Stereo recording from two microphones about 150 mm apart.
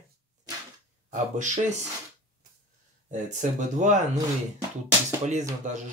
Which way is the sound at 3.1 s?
55° right (ahead or behind).